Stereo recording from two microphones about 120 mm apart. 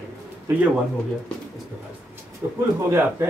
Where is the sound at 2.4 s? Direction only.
20° right (ahead or behind).